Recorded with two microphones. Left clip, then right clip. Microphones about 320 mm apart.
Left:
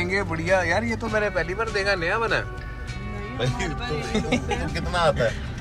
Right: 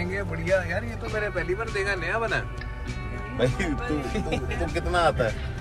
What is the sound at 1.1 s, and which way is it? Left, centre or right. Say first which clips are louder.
Speech: left 3 dB; centre.